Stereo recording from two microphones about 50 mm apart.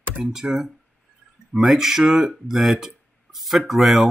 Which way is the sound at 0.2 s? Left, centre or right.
Centre.